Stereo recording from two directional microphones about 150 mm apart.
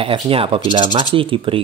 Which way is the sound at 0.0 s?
40° right (ahead or behind).